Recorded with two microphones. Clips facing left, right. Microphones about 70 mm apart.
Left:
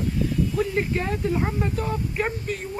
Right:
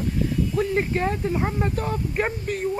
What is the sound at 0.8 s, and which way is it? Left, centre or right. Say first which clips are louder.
Speech: right 2 dB; right.